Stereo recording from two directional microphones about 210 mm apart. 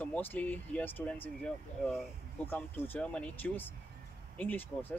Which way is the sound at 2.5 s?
5° left (ahead or behind).